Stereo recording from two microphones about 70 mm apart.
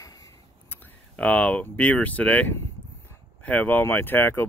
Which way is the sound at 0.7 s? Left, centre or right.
Centre.